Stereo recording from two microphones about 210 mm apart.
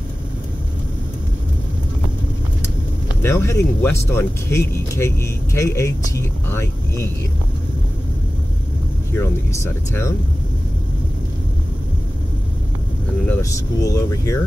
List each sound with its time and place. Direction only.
3.2 s speech: 10° left (ahead or behind)
9.2 s speech: 15° left (ahead or behind)
13.3 s speech: 15° left (ahead or behind)